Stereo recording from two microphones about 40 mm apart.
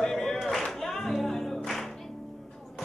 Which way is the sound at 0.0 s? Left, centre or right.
Centre.